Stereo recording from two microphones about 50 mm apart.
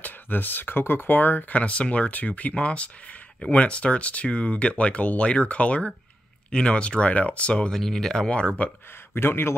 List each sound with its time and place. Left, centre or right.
0.0 s speech: left
7.7 s speech: centre
8.3 s speech: left
9.1 s speech: left